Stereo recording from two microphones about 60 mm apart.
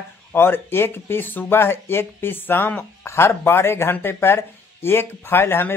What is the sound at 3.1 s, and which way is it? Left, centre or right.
Speech, left.